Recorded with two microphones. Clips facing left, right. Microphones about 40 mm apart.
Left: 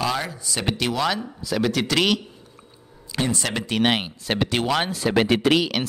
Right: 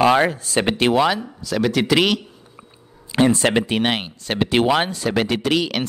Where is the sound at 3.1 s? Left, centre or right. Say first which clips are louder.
Right 8 dB; right.